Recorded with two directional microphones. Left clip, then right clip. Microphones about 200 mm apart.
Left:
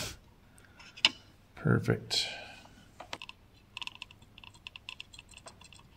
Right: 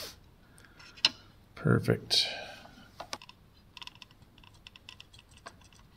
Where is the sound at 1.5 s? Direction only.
10° right (ahead or behind).